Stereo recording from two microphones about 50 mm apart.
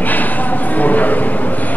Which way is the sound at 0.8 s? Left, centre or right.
Left.